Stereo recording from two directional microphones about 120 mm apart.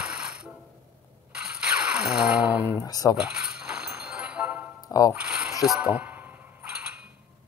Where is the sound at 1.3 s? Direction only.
5° right (ahead or behind).